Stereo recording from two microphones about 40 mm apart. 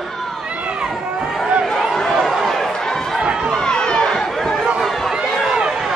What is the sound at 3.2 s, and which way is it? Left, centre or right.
Chatter, right.